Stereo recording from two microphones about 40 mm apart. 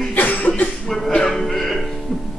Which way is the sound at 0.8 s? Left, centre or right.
Centre.